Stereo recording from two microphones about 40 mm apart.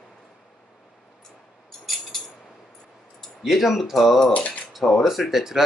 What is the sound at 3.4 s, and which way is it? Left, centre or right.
Speech, centre.